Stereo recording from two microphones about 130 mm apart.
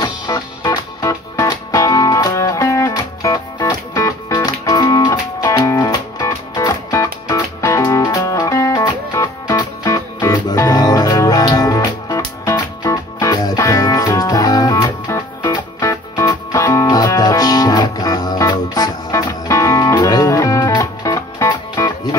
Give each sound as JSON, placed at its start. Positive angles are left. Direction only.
{"t": 0.0, "sound": "music", "side_deg": 30}